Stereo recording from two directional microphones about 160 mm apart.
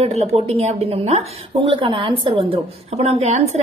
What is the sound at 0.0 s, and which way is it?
A woman's voice, 40° right (ahead or behind).